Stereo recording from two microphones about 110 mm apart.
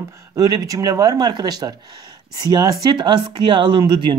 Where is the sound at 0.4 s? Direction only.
35° right (ahead or behind).